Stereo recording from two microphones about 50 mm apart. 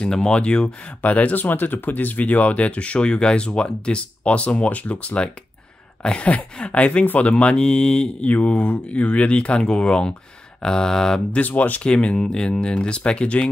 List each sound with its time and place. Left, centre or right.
0.0 s speech: centre
1.0 s speech: left; by 11.2 s centre
11.3 s speech: left
11.9 s speech: centre